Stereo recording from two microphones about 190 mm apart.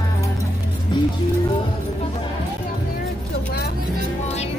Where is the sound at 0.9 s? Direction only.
25° left (ahead or behind).